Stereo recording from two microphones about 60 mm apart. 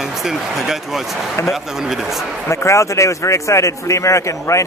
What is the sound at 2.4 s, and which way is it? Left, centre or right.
Speech, left.